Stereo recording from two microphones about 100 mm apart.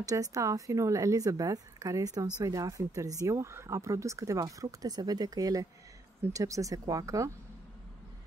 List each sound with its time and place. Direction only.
0.0 s speech: 35° right (ahead or behind)